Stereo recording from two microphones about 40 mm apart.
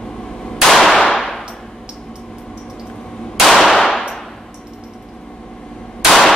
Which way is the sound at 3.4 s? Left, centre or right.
Centre.